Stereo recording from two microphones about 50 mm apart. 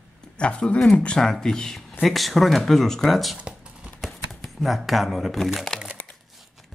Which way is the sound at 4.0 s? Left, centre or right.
Centre.